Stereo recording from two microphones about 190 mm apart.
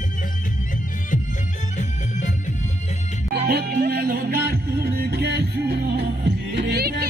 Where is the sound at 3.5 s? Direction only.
55° right (ahead or behind).